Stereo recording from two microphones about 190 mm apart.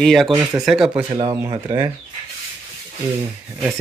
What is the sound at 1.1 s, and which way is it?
Speech, 25° right (ahead or behind).